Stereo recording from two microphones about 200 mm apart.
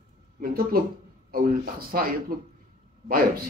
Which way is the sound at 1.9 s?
45° right (ahead or behind).